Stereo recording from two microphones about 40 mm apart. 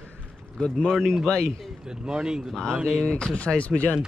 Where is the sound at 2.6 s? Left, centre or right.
Left.